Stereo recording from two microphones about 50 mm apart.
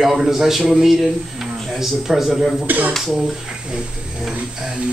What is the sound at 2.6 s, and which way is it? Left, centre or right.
Speech, right.